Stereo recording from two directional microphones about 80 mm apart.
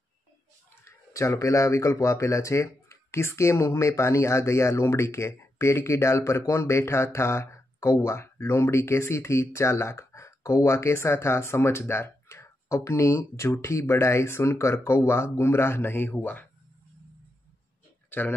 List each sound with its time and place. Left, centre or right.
0.8 s speech: left